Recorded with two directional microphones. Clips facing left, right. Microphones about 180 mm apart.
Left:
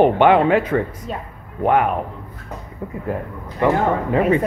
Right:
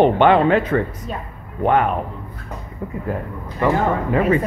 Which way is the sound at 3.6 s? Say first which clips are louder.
Left 1 dB; 20° left (ahead or behind).